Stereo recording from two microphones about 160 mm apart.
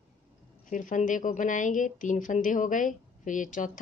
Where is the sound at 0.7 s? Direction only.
55° left (ahead or behind).